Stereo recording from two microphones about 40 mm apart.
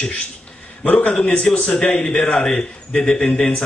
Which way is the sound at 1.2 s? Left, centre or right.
Left.